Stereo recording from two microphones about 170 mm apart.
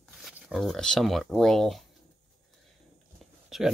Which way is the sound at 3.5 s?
Centre (ahead or behind).